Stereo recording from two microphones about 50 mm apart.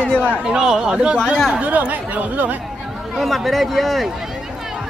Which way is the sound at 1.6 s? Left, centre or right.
Right.